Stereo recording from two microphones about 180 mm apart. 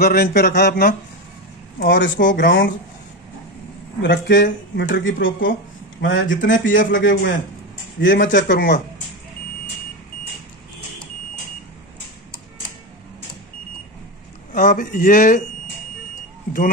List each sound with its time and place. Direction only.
0.0 s speech: 60° left (ahead or behind)
1.8 s speech: 90° left
2.2 s speech: 75° left (ahead or behind)
4.0 s speech: 80° left
5.4 s a sound: 50° left (ahead or behind)
6.0 s speech: 90° left
6.6 s speech: 45° left (ahead or behind)
6.9 s speech: 90° left
8.3 s speech: 50° left (ahead or behind)
14.5 s speech: 50° left (ahead or behind)